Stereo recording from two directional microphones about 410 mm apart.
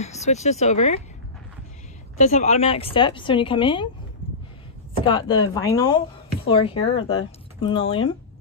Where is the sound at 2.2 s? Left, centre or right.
Centre.